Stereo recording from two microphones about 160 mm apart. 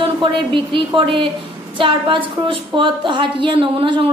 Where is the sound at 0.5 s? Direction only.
30° right (ahead or behind).